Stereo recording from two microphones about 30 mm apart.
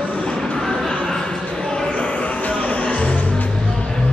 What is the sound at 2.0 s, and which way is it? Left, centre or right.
Music, left.